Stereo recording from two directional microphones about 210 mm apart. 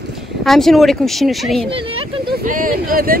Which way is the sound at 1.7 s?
25° right (ahead or behind).